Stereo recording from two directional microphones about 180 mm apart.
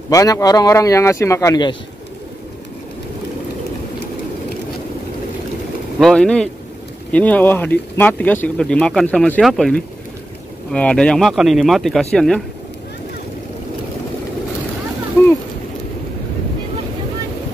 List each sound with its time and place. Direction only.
0.1 s speech: 20° left (ahead or behind)
5.9 s speech: centre (ahead or behind)
15.2 s a sound: 15° left (ahead or behind)